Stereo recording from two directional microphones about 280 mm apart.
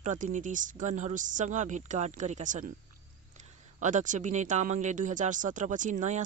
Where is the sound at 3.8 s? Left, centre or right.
Right.